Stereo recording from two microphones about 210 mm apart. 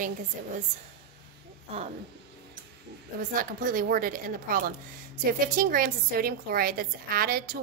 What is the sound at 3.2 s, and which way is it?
A woman's voice, 40° right (ahead or behind).